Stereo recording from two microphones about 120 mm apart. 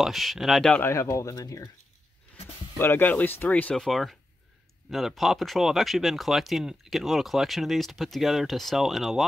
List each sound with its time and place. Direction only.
0.0 s speech: centre (ahead or behind)
0.7 s speech: 20° left (ahead or behind)
2.8 s speech: 15° left (ahead or behind)
3.8 s speech: centre (ahead or behind)